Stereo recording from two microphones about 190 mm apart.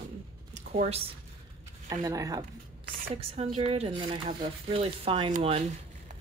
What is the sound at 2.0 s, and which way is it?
Speech, 15° right (ahead or behind).